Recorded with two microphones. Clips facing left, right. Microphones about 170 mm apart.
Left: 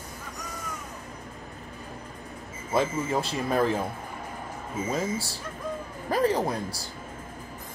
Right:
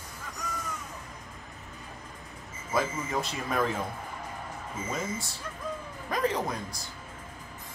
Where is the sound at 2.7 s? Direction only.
30° left (ahead or behind).